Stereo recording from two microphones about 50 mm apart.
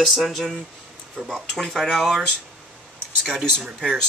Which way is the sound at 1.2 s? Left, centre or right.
Centre.